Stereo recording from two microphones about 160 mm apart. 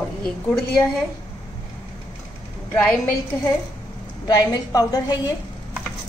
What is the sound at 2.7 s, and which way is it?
Speech, 5° left (ahead or behind).